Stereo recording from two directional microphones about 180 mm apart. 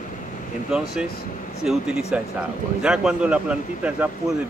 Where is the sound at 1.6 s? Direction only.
5° right (ahead or behind).